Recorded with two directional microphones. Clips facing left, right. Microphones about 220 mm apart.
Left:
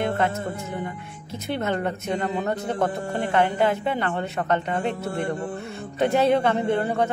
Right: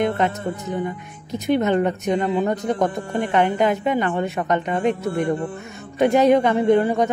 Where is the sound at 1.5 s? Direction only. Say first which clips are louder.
Right 7 dB; 20° right (ahead or behind).